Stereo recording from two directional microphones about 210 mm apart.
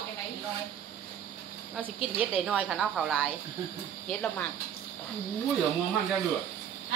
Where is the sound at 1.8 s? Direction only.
5° right (ahead or behind).